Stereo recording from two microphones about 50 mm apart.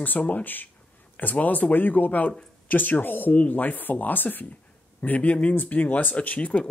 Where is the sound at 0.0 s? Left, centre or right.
Left.